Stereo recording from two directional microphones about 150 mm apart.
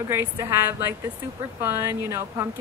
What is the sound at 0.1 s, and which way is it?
Speech, 15° right (ahead or behind).